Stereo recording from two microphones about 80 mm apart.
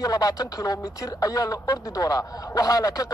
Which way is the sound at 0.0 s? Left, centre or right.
Left.